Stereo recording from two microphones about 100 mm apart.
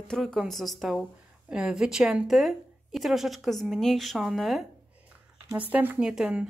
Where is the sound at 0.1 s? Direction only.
5° left (ahead or behind).